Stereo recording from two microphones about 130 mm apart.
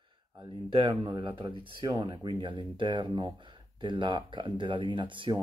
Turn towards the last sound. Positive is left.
turn(degrees=-40)  # may be behind; listen again after turning